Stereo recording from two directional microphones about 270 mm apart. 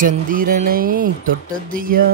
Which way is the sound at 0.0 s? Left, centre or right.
Right.